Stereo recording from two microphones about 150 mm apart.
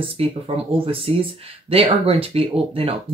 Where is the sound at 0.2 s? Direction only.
40° right (ahead or behind).